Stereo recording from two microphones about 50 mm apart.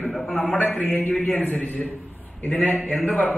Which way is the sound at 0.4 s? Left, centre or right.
Left.